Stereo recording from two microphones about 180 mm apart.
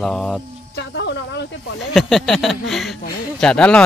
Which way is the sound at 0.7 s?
75° left (ahead or behind).